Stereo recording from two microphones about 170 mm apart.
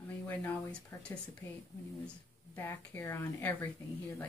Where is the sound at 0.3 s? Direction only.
15° left (ahead or behind).